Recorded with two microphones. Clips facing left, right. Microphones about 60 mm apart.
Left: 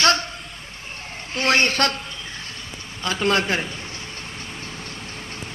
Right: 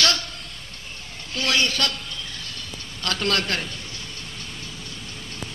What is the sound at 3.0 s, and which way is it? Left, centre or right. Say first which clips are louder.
Speech: left 4 dB; centre.